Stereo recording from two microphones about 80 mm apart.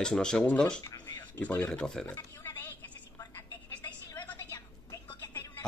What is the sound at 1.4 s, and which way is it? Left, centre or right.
Speech, centre.